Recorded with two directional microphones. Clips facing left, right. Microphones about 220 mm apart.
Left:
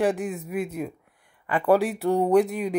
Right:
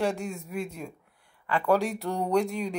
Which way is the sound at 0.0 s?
15° left (ahead or behind).